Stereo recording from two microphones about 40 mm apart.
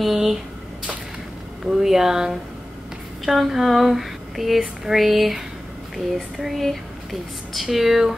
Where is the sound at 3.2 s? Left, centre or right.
Centre.